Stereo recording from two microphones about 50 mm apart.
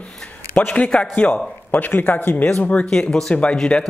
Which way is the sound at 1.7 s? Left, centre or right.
Left.